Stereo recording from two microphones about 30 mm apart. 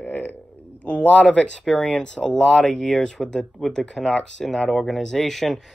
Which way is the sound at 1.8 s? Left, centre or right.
Left.